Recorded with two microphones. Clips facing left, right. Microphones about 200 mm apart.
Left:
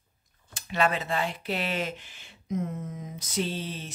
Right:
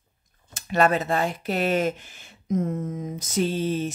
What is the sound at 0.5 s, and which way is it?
Speech, 45° right (ahead or behind).